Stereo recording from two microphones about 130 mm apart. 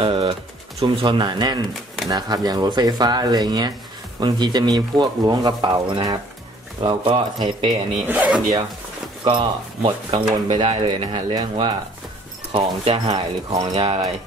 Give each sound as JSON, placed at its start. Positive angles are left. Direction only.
{"t": 0.0, "sound": "speech", "side_deg": -45}
{"t": 6.8, "sound": "speech", "side_deg": -40}
{"t": 8.1, "sound": "speech", "side_deg": -10}
{"t": 9.2, "sound": "speech", "side_deg": -35}
{"t": 13.1, "sound": "speech", "side_deg": -30}